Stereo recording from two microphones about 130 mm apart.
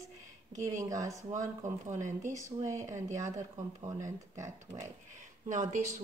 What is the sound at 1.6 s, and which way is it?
Speech, 70° right (ahead or behind).